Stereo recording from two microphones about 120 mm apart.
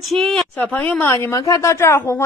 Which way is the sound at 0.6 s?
15° left (ahead or behind).